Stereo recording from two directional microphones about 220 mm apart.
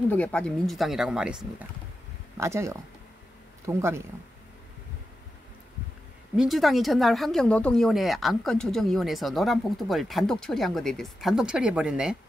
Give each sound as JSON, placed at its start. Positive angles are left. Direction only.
{"t": 0.1, "sound": "speech", "side_deg": 5}
{"t": 6.3, "sound": "speech", "side_deg": 0}